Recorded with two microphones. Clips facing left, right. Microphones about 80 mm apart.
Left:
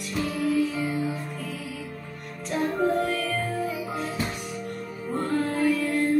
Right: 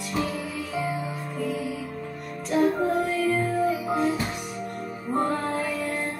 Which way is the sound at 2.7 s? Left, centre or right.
Centre.